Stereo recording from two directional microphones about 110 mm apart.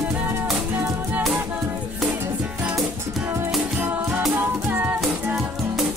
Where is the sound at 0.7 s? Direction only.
20° right (ahead or behind).